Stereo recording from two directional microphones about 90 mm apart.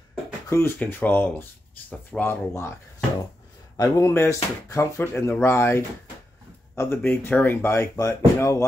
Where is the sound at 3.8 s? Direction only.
30° left (ahead or behind).